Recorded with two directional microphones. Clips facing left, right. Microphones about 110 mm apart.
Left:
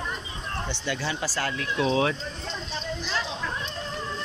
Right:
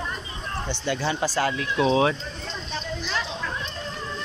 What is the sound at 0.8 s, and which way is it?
Speech, 30° right (ahead or behind).